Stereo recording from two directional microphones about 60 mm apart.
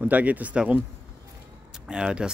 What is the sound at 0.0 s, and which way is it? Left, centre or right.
Speech, right.